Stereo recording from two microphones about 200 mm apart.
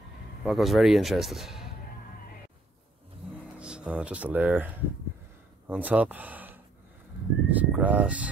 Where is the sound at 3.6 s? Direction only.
5° right (ahead or behind).